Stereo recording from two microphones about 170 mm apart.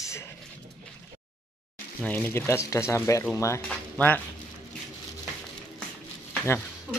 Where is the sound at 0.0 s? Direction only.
15° left (ahead or behind).